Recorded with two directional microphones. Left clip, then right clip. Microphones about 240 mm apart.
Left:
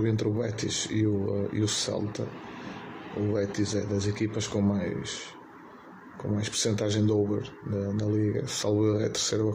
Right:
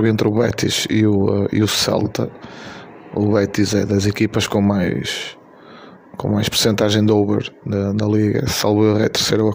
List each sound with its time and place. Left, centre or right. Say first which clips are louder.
0.0 s speech: right 12 dB; right
3.3 s speech: right 12 dB; right
6.3 s speech: right 12 dB; right